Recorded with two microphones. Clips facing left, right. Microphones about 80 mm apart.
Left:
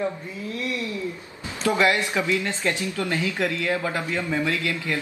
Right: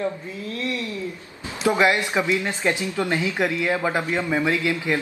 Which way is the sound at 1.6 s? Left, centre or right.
Right.